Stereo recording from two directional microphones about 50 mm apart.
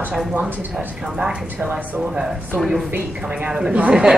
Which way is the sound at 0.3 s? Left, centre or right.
Right.